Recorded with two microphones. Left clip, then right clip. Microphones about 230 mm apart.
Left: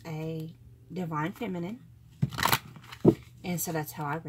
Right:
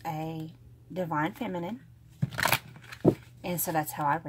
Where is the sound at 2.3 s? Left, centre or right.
Centre.